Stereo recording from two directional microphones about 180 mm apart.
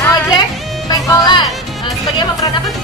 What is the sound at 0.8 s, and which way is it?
Music, 25° left (ahead or behind).